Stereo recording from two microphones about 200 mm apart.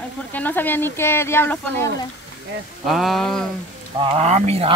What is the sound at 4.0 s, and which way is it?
Speech, 30° right (ahead or behind).